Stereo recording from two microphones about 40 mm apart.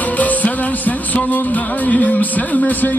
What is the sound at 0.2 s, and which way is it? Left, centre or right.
Music, left.